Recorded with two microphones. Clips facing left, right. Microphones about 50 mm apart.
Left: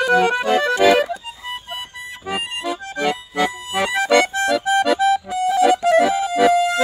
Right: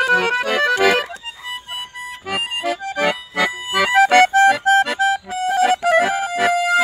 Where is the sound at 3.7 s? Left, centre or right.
Right.